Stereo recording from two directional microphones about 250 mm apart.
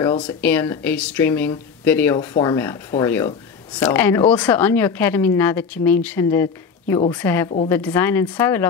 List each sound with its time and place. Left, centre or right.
0.2 s speech: centre
7.4 s a woman's voice: left
7.7 s speech: centre